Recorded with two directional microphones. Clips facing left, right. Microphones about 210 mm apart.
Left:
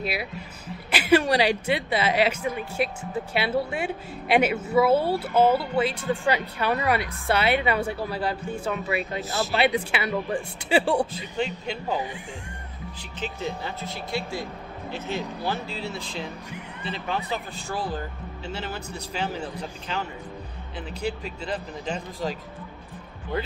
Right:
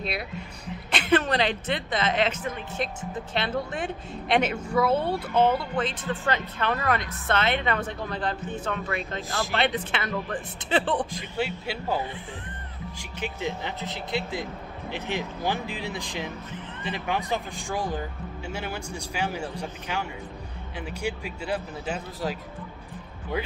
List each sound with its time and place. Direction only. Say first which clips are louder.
0.0 s a woman's voice: left 2 dB; 5° left (ahead or behind)
11.3 s speech: left 1 dB; 5° right (ahead or behind)
11.9 s a woman's voice: even; 15° left (ahead or behind)
13.2 s speech: even; 15° right (ahead or behind)